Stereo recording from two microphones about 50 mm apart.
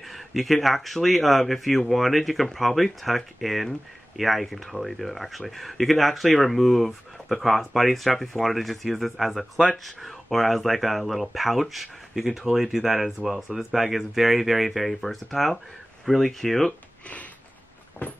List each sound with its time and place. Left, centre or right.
0.1 s speech: centre